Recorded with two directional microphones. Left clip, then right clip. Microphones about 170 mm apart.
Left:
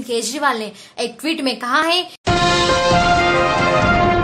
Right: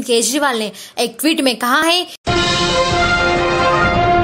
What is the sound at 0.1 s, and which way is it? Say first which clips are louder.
Speech: right 4 dB; 35° right (ahead or behind).